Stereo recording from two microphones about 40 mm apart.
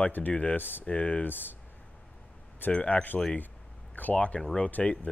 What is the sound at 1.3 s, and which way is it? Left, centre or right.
Speech, left.